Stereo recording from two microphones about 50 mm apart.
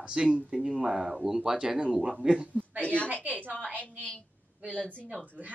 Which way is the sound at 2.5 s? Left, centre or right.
Right.